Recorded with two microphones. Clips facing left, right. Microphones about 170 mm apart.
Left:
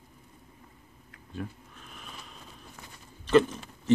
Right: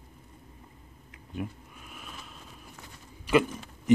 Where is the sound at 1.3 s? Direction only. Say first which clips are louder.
Right 2 dB; 10° right (ahead or behind).